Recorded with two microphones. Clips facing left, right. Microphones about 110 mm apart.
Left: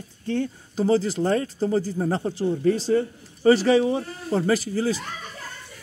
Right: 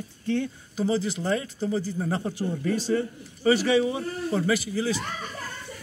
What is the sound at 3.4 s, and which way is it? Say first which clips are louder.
Speech: left 4 dB; 35° left (ahead or behind).